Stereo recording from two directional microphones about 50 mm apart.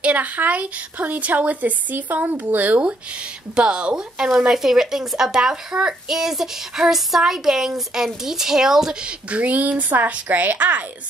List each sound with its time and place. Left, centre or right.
0.0 s speech: right
3.5 s speech: centre
9.3 s speech: right